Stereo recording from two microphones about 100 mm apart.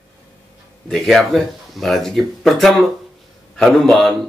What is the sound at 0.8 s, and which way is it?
Speech, centre (ahead or behind).